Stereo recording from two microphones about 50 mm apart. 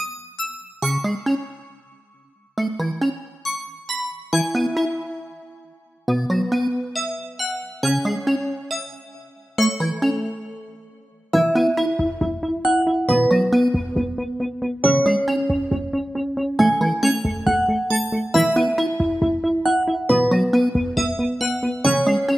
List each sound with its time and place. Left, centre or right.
0.0 s music: centre
2.5 s music: centre
6.0 s music: centre
8.4 s music: centre
9.6 s music: centre
11.3 s music: centre